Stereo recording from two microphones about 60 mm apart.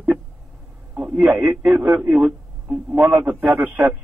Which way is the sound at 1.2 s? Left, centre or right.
Centre.